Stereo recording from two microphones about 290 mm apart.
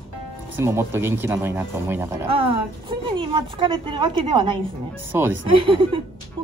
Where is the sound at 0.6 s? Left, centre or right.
Centre.